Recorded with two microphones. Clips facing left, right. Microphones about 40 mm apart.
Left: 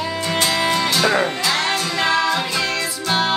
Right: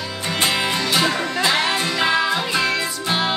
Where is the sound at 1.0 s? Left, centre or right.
Left.